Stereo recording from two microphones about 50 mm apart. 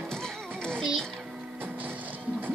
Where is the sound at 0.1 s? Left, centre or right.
Centre.